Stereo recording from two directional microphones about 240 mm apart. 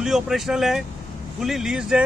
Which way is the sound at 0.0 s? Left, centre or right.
Centre.